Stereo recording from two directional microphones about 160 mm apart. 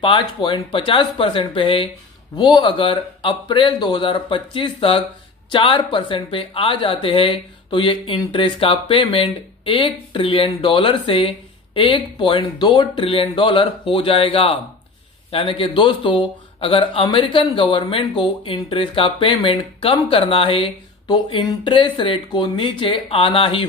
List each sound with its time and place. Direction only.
0.0 s speech: 30° left (ahead or behind)